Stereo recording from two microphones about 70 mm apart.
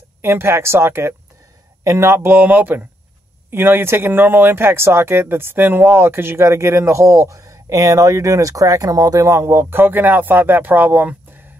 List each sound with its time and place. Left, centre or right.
0.2 s speech: right